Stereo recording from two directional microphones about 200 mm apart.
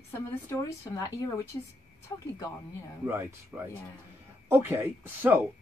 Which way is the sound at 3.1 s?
10° right (ahead or behind).